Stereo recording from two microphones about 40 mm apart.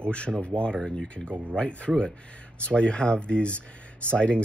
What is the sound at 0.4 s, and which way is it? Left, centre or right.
Speech, left.